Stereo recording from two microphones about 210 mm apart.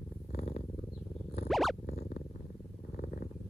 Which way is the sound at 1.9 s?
45° left (ahead or behind).